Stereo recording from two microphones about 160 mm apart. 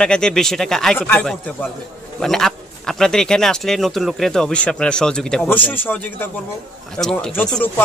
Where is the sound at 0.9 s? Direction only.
15° left (ahead or behind).